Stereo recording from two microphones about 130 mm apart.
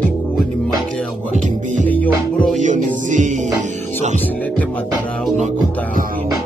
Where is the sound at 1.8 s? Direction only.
10° left (ahead or behind).